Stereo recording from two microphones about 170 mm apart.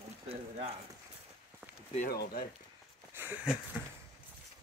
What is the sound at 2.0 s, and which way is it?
Speech, 65° left (ahead or behind).